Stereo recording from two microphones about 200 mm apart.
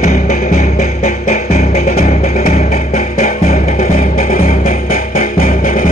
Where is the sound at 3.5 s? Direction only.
45° left (ahead or behind).